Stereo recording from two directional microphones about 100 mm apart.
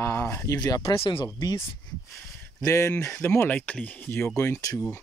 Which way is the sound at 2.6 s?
30° left (ahead or behind).